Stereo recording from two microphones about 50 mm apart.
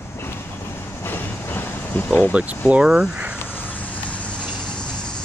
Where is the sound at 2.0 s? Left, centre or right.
Left.